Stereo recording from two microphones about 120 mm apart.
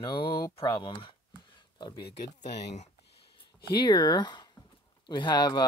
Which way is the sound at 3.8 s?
35° left (ahead or behind).